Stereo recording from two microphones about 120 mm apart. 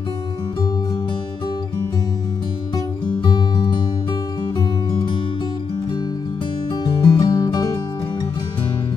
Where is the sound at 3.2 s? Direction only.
40° left (ahead or behind).